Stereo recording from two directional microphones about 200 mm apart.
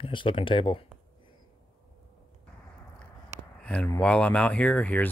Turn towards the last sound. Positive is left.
turn(degrees=10)  # may be behind; listen again after turning